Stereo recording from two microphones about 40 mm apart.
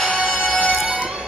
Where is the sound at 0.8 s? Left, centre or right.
Right.